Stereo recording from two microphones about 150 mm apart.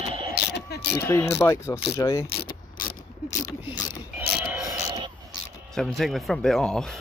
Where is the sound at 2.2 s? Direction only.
90° left.